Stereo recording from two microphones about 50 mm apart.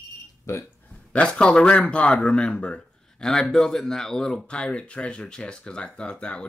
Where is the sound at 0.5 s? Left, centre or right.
Left.